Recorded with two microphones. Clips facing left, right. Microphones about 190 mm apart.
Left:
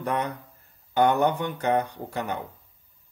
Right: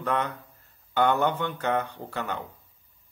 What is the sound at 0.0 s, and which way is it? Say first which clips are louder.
Speech: even; 15° left (ahead or behind).